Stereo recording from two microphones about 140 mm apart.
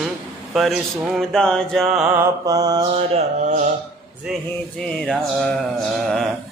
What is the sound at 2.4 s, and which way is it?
Mantra, 25° right (ahead or behind).